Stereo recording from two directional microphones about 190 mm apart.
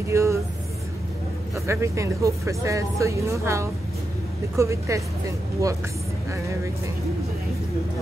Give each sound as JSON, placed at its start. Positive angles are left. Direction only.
{"t": 0.1, "sound": "vehicle", "side_deg": -15}
{"t": 1.5, "sound": "speech", "side_deg": -15}